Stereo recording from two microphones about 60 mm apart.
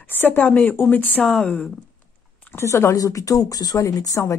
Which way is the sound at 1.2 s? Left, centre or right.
Centre.